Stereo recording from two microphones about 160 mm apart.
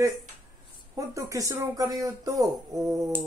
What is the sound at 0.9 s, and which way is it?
Speech, 20° right (ahead or behind).